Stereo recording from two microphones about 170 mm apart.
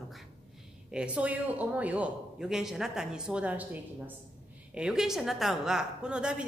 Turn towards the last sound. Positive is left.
turn(degrees=-5)  # may be behind; listen again after turning